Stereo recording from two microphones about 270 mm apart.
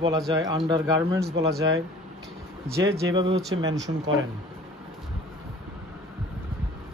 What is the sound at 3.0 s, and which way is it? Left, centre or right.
Speech, centre.